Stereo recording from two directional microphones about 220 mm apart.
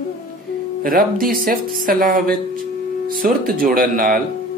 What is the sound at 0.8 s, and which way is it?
Speech, 40° right (ahead or behind).